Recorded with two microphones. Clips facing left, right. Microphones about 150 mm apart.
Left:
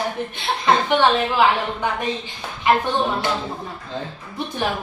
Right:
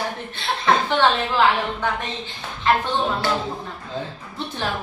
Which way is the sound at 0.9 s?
10° left (ahead or behind).